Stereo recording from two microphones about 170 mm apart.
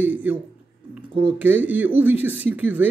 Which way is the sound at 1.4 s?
10° right (ahead or behind).